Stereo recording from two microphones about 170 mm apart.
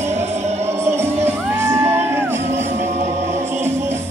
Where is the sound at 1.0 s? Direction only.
15° right (ahead or behind).